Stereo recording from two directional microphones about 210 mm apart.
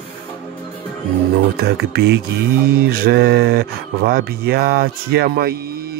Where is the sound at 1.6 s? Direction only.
50° right (ahead or behind).